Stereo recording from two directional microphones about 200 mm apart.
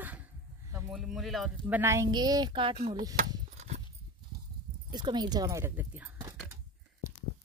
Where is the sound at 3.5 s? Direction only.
35° right (ahead or behind).